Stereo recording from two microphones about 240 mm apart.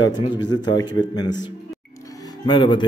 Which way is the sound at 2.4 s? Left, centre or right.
Centre.